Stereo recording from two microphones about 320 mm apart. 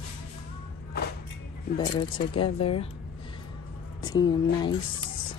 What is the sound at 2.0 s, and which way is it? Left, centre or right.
Speech, centre.